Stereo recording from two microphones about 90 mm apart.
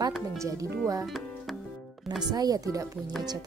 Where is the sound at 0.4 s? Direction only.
40° right (ahead or behind).